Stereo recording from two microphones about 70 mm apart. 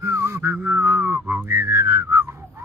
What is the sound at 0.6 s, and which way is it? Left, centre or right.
Whistling, right.